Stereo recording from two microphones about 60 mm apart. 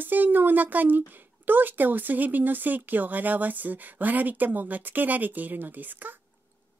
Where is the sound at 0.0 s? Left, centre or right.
Right.